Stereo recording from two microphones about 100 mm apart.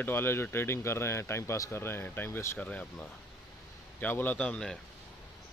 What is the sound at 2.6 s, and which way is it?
A man's voice, 15° left (ahead or behind).